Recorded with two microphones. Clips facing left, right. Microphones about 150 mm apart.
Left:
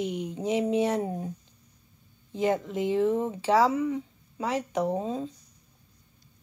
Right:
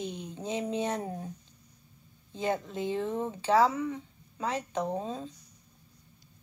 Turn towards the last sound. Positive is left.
turn(degrees=20)  # may be behind; listen again after turning